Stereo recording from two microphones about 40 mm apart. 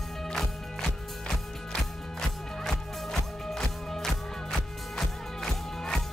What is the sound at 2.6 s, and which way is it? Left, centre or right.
Music, centre.